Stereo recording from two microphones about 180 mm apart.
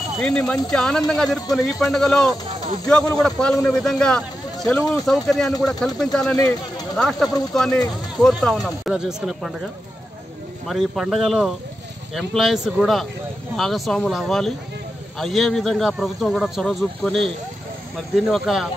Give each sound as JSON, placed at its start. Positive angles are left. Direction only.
{"t": 0.2, "sound": "a man's voice", "side_deg": 5}
{"t": 4.7, "sound": "speech", "side_deg": 20}
{"t": 5.0, "sound": "a man's voice", "side_deg": 0}
{"t": 6.3, "sound": "speech", "side_deg": 20}
{"t": 7.0, "sound": "a man's voice", "side_deg": 0}
{"t": 10.7, "sound": "a man's voice", "side_deg": 0}